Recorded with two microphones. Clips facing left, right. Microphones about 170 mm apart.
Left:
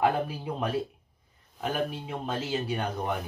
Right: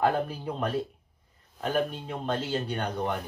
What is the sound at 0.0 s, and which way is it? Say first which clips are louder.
Speech: even; 5° left (ahead or behind).